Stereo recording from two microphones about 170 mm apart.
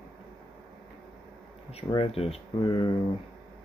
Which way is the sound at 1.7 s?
30° left (ahead or behind).